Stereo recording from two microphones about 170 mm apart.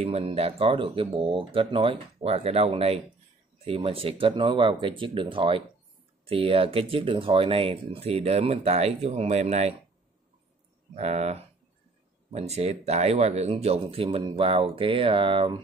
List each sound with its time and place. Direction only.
0.0 s speech: 35° right (ahead or behind)
11.0 s speech: 40° right (ahead or behind)